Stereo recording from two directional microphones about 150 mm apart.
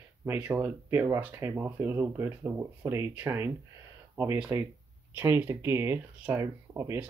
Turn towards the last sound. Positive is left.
turn(degrees=-15)  # may be behind; listen again after turning